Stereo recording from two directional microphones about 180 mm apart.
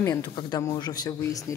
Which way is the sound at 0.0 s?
20° left (ahead or behind).